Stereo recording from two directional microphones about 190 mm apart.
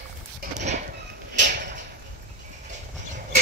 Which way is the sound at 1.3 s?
65° right (ahead or behind).